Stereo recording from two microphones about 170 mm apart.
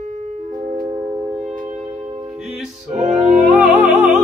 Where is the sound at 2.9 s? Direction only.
40° right (ahead or behind).